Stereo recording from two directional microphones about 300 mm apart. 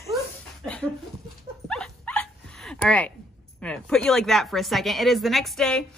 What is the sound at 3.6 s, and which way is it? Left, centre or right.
A woman's voice, centre.